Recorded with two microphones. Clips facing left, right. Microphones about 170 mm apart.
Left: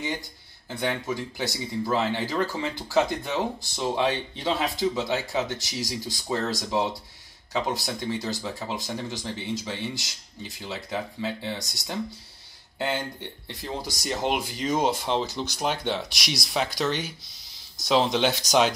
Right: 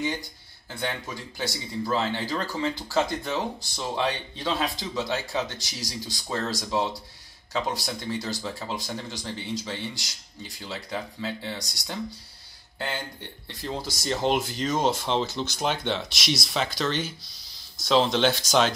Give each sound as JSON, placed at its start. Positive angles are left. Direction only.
{"t": 0.7, "sound": "speech", "side_deg": 20}